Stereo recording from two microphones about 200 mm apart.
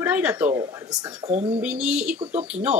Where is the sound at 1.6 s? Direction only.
5° right (ahead or behind).